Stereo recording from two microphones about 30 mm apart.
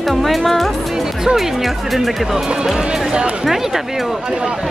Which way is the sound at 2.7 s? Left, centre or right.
Right.